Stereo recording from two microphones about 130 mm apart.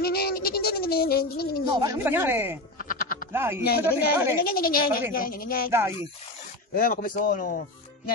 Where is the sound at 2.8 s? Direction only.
90° left.